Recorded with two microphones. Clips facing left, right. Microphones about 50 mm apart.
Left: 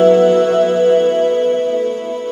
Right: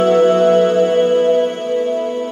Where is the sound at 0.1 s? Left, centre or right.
Right.